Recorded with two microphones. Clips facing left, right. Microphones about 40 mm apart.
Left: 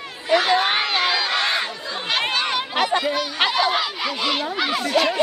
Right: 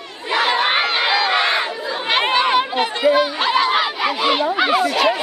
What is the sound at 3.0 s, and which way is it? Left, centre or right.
Speech, right.